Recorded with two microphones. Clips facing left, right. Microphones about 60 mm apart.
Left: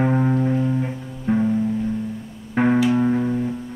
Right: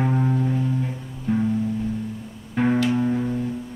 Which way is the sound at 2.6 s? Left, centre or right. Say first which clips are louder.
Left 3 dB; centre.